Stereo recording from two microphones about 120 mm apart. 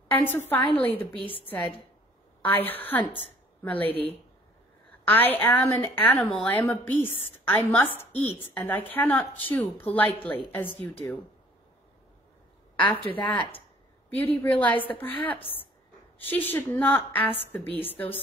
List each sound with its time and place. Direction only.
0.1 s a woman's voice: 20° left (ahead or behind)
2.4 s a woman's voice: 15° left (ahead or behind)
5.0 s a woman's voice: 15° left (ahead or behind)
12.7 s a woman's voice: 15° left (ahead or behind)